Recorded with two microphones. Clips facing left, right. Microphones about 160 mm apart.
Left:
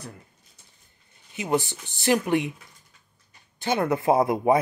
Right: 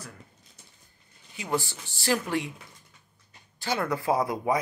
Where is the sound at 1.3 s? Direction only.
20° left (ahead or behind).